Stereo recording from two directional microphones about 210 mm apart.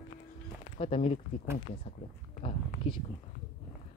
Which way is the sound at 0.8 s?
25° left (ahead or behind).